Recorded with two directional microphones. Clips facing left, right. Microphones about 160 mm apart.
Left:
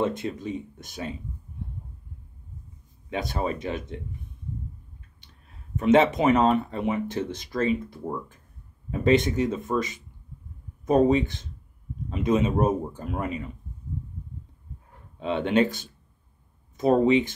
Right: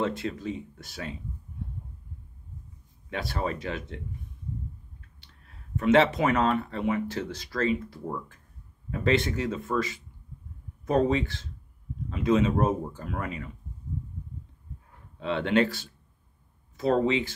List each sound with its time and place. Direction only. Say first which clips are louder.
0.0 s speech: left 2 dB; 20° left (ahead or behind)
3.1 s speech: left 3 dB; 20° left (ahead or behind)
5.8 s speech: left 2 dB; 20° left (ahead or behind)
15.1 s speech: left 2 dB; 20° left (ahead or behind)